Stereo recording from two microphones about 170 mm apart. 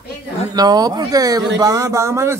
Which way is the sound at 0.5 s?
25° right (ahead or behind).